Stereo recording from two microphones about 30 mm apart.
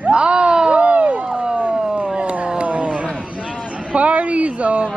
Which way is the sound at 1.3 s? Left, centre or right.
Right.